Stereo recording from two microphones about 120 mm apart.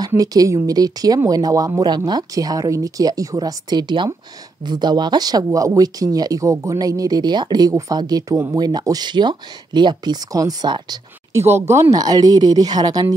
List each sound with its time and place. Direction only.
0.2 s speech: 30° right (ahead or behind)
11.3 s speech: 20° right (ahead or behind)